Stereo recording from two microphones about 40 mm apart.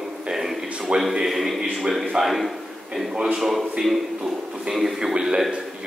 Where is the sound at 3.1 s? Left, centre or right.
Centre.